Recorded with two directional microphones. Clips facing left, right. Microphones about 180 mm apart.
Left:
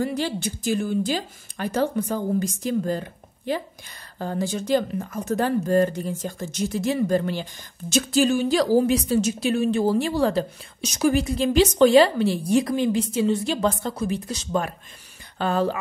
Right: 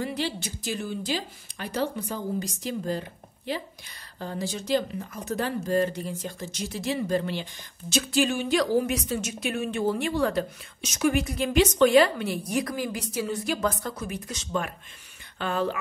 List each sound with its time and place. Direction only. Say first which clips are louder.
0.0 s speech: left 5 dB; 45° left (ahead or behind)
4.2 s a woman's voice: left 6 dB; 50° left (ahead or behind)